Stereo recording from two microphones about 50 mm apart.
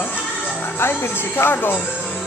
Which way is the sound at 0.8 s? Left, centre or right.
Left.